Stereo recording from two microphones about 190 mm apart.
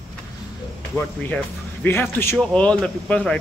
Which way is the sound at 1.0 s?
10° left (ahead or behind).